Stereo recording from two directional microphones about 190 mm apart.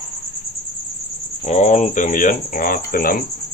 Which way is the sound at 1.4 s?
35° left (ahead or behind).